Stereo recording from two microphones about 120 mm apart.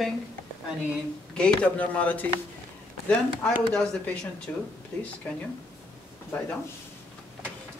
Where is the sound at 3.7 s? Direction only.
5° left (ahead or behind).